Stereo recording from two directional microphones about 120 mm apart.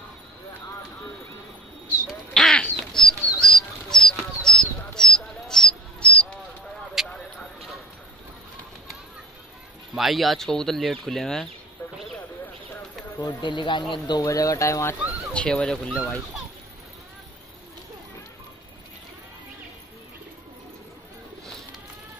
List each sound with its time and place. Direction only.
2.0 s quack: 5° left (ahead or behind)
2.9 s a sound: 5° left (ahead or behind)
7.0 s a sound: 5° right (ahead or behind)
9.9 s speech: centre (ahead or behind)
13.4 s speech: 40° left (ahead or behind); by 15.0 s 25° left (ahead or behind)
15.3 s speech: 10° left (ahead or behind)